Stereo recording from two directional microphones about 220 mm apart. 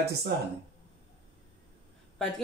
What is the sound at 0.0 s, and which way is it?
Speech, 50° right (ahead or behind).